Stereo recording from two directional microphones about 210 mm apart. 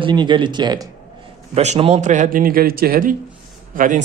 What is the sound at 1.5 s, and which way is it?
A man's voice, 30° right (ahead or behind).